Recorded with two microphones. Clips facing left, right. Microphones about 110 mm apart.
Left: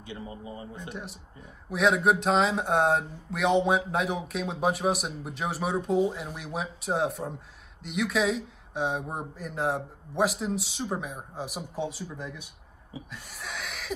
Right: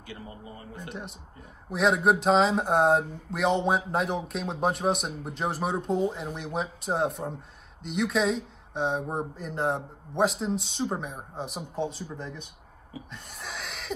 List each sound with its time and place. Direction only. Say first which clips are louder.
0.0 s a man's voice: left 3 dB; 25° left (ahead or behind)
1.7 s speech: even; centre (ahead or behind)
13.1 s a sound: even; centre (ahead or behind)